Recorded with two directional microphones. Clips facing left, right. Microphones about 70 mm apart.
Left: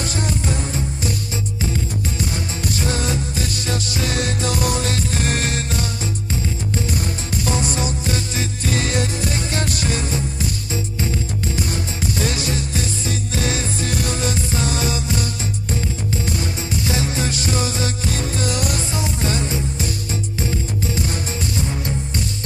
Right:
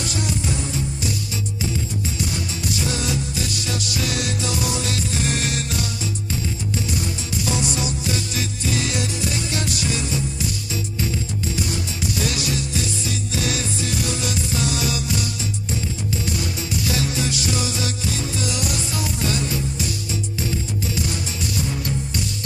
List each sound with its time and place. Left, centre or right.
0.0 s music: left
7.0 s music: left
11.7 s music: left
16.3 s music: left
18.9 s music: left
20.9 s music: left